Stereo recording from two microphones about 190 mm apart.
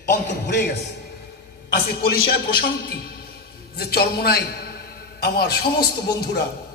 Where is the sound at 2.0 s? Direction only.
55° left (ahead or behind).